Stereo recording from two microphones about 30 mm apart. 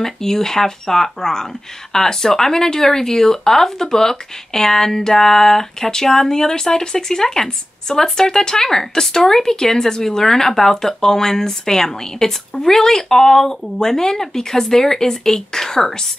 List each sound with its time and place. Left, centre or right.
0.0 s speech: centre